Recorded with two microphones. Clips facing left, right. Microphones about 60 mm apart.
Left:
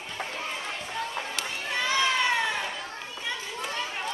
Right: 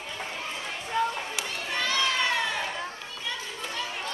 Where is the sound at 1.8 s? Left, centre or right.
Centre.